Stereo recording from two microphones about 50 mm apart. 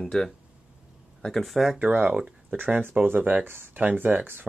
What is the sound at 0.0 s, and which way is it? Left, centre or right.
Speech, centre.